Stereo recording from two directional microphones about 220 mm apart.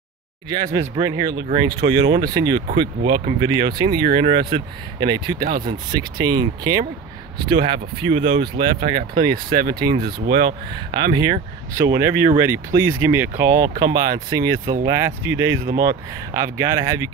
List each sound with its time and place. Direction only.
0.5 s speech: 15° right (ahead or behind)